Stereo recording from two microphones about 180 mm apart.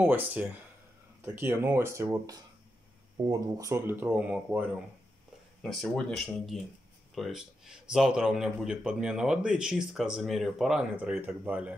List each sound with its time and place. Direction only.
0.0 s speech: 10° right (ahead or behind)